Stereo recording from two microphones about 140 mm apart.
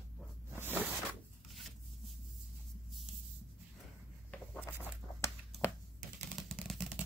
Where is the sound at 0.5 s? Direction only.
15° right (ahead or behind).